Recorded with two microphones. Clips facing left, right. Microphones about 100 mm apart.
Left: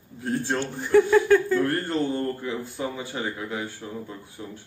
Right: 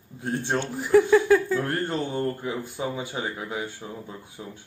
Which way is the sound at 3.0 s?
15° right (ahead or behind).